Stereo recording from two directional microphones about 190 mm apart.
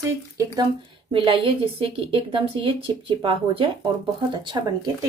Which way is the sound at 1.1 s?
25° right (ahead or behind).